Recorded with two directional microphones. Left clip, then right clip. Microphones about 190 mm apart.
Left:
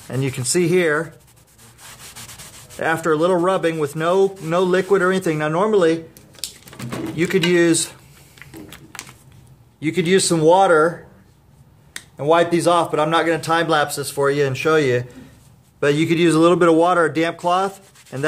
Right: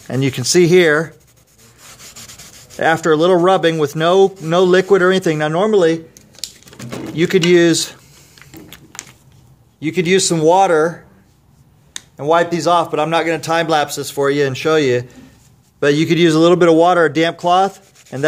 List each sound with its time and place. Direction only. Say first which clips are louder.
0.1 s a man's voice: right 7 dB; 35° right (ahead or behind)
2.8 s a man's voice: right 5 dB; 35° right (ahead or behind)
6.3 s a sound: right 2 dB; 10° right (ahead or behind)
7.2 s a man's voice: right 5 dB; 30° right (ahead or behind)
9.8 s a man's voice: right 3 dB; 25° right (ahead or behind)